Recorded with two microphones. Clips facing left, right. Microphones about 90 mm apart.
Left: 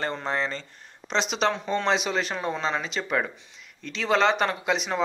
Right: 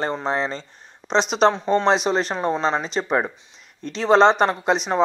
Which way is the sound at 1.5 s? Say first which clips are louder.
Right 7 dB; 25° right (ahead or behind).